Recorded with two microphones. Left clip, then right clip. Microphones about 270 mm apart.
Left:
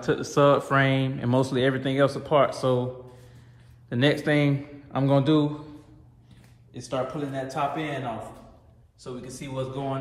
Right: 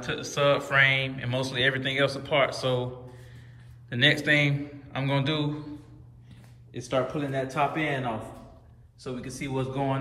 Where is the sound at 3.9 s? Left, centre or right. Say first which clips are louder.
Right 1 dB; centre.